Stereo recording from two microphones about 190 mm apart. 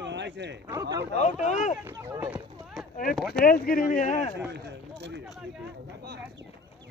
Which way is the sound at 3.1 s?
Centre (ahead or behind).